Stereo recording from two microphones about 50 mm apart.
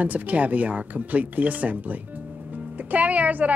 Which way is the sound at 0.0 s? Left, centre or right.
Right.